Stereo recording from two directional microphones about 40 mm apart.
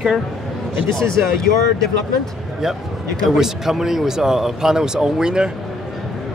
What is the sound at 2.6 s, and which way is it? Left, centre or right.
Speech, centre.